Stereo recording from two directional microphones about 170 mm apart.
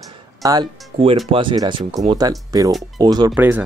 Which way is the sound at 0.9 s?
35° right (ahead or behind).